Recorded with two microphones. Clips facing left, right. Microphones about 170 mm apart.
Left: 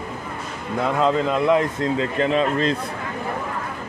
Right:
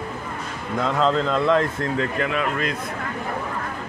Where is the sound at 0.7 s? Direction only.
10° left (ahead or behind); by 2.8 s 30° left (ahead or behind).